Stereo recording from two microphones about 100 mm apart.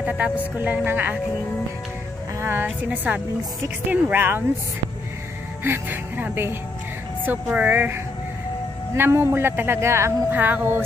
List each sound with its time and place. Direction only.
0.2 s speech: 15° right (ahead or behind)
2.4 s speech: 20° right (ahead or behind)
5.6 s speech: 20° right (ahead or behind)